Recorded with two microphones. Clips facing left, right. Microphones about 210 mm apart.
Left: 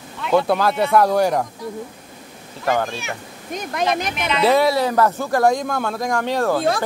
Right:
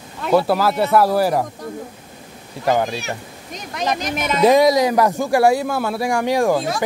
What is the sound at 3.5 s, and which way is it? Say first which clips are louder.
Speech: left 2 dB; 55° left (ahead or behind).